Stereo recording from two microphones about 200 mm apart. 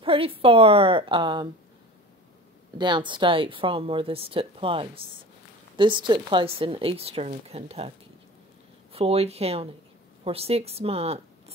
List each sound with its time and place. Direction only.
0.0 s speech: 25° right (ahead or behind)
2.8 s speech: 25° right (ahead or behind)
8.9 s speech: 30° right (ahead or behind)